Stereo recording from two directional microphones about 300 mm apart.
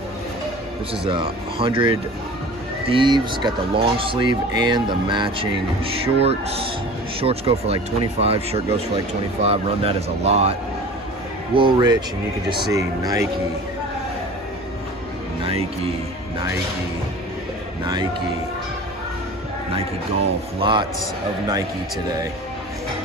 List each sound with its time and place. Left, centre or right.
1.0 s speech: centre
11.5 s speech: centre
15.4 s speech: centre
20.5 s speech: centre